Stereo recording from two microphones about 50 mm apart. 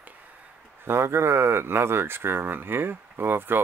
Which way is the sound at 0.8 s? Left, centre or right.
Right.